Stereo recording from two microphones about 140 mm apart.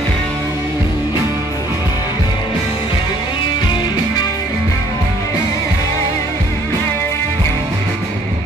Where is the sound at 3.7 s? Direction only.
30° left (ahead or behind).